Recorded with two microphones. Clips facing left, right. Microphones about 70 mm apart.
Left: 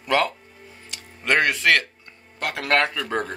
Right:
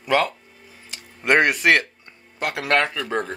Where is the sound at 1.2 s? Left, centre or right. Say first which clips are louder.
Right 3 dB; centre.